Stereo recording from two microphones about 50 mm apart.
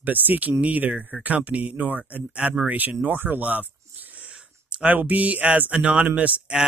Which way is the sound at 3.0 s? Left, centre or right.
Right.